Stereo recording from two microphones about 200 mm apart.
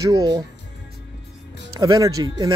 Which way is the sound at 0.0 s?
20° right (ahead or behind).